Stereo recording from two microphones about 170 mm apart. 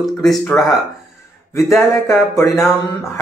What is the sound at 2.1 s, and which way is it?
Speech, centre (ahead or behind).